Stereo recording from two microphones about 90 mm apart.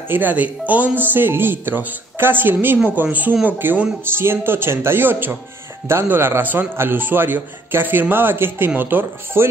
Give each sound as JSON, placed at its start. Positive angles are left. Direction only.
{"t": 0.1, "sound": "a man's voice", "side_deg": -20}